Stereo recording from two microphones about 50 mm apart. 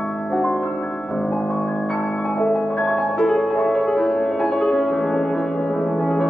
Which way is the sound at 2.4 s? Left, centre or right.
Centre.